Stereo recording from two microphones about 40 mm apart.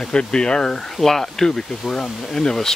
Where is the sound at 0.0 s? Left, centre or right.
Left.